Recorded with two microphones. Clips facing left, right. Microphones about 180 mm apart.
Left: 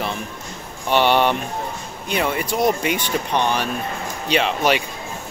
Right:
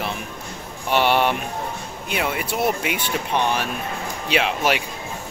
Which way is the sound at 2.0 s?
5° right (ahead or behind).